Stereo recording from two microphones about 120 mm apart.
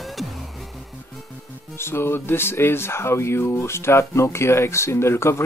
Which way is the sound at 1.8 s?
20° left (ahead or behind).